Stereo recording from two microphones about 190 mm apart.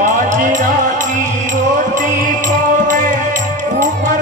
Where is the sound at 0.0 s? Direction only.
40° right (ahead or behind).